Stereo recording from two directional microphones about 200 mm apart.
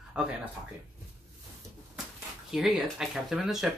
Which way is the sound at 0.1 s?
5° right (ahead or behind).